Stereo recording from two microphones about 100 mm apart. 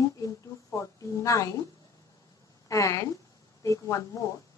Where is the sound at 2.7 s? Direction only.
30° left (ahead or behind).